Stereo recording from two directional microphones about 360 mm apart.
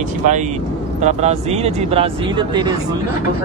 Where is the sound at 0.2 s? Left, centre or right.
Centre.